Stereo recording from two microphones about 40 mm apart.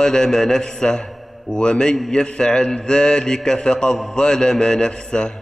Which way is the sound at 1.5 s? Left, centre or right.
Left.